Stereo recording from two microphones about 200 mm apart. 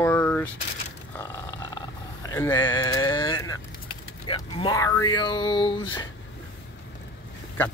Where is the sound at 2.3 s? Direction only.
10° left (ahead or behind).